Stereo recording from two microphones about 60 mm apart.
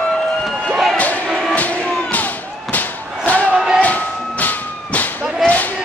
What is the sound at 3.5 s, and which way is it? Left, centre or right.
Music, centre.